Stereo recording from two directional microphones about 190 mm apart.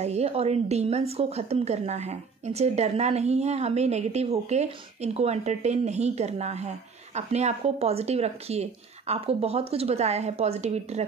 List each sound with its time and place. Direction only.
0.0 s a woman's voice: 35° right (ahead or behind)